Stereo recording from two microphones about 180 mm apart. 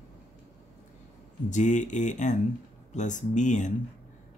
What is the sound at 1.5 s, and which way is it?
Speech, 45° left (ahead or behind).